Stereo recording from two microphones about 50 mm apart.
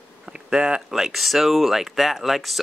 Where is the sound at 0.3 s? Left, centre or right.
Centre.